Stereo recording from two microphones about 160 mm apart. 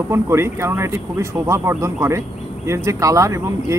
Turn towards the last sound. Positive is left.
turn(degrees=-20)  # may be behind; listen again after turning